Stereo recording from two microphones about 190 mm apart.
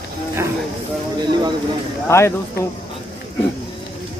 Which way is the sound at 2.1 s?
15° left (ahead or behind).